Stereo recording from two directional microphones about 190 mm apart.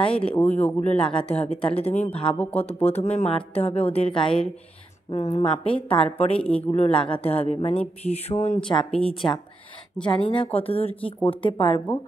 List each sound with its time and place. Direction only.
0.1 s speech: 5° left (ahead or behind)
0.8 s a woman's voice: 30° left (ahead or behind)
2.3 s speech: 10° left (ahead or behind)
2.6 s a woman's voice: 35° left (ahead or behind)
6.3 s speech: 5° left (ahead or behind)
6.7 s a woman's voice: 30° left (ahead or behind)